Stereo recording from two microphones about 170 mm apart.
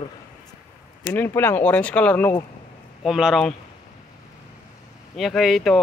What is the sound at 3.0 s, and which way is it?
Speech, 5° right (ahead or behind).